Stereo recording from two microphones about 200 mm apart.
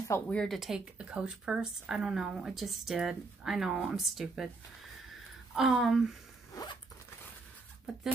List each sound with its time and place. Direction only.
0.1 s speech: 5° left (ahead or behind)
5.5 s speech: centre (ahead or behind)
6.5 s zipper: 20° left (ahead or behind)